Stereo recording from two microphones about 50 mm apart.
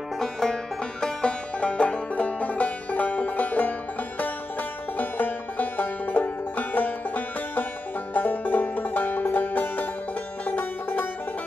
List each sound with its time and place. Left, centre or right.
0.2 s music: centre
1.0 s music: left